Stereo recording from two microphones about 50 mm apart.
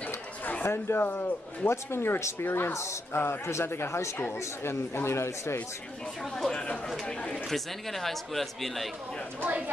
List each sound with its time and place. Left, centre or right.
0.7 s speech: left
1.0 s a man's voice: left
1.7 s speech: left
2.4 s a man's voice: left
2.7 s speech: left
3.1 s a man's voice: left
6.3 s speech: centre
7.4 s speech: centre